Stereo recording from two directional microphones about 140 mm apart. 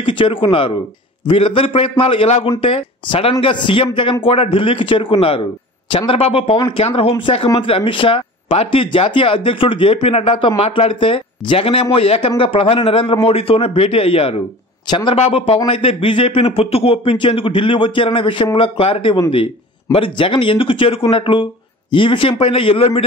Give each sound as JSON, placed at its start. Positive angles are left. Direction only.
{"t": 0.0, "sound": "speech", "side_deg": 35}
{"t": 14.9, "sound": "speech", "side_deg": 35}
{"t": 15.1, "sound": "speech", "side_deg": 50}